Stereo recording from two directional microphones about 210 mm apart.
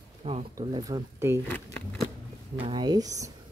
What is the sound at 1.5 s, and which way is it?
Speech, 5° left (ahead or behind).